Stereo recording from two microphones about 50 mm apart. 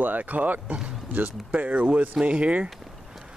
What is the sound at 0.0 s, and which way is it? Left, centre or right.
Speech, right.